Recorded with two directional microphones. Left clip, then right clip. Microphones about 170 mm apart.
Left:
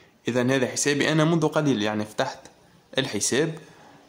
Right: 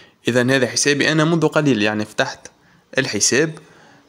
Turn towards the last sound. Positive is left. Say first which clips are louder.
# right 7 dB
turn(degrees=-15)  # may be behind; listen again after turning